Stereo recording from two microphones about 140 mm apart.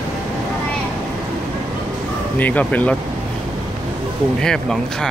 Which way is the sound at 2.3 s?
10° left (ahead or behind).